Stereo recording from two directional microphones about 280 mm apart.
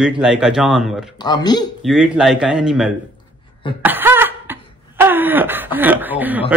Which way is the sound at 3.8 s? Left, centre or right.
Centre.